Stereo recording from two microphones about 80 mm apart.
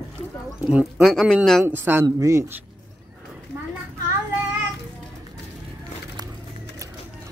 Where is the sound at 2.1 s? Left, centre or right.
Right.